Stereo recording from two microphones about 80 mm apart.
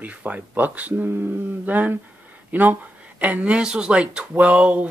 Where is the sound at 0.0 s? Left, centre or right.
Centre.